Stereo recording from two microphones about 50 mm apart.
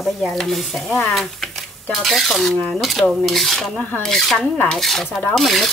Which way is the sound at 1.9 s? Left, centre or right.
Centre.